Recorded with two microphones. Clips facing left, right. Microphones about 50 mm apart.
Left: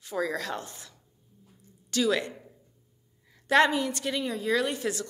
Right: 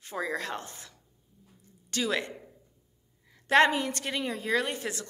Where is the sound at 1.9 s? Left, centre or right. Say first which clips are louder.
Left 4 dB; right.